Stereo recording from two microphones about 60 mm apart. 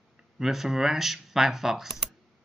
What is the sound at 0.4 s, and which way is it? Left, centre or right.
Speech, centre.